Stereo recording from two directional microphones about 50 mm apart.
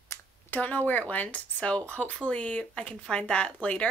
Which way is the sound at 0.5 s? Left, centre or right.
Left.